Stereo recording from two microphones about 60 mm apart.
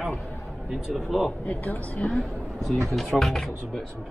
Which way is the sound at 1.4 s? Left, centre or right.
Left.